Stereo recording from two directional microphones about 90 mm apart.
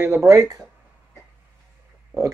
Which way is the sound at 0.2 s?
35° right (ahead or behind).